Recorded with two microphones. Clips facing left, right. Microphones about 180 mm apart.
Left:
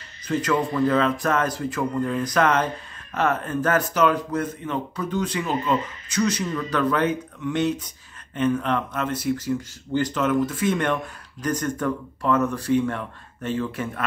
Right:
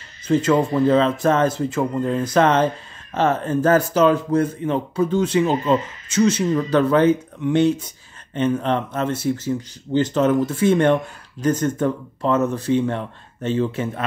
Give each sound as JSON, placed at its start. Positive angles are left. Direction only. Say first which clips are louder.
{"t": 0.3, "sound": "speech", "louder": "right 6 dB", "side_deg": -25}